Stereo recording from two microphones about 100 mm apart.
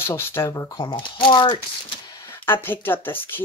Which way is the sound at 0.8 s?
55° left (ahead or behind).